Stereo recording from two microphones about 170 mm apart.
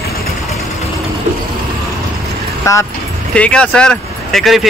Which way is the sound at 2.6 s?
15° left (ahead or behind).